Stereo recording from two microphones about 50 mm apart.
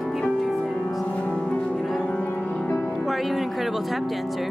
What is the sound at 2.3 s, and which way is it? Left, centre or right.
Music, centre.